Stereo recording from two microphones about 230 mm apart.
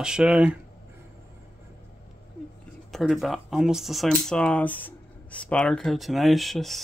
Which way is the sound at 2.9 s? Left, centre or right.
Centre.